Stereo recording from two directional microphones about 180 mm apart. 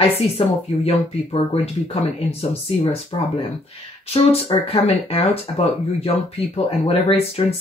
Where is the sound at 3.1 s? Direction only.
25° left (ahead or behind).